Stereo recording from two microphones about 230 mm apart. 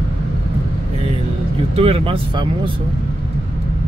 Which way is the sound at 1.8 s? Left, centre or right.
Right.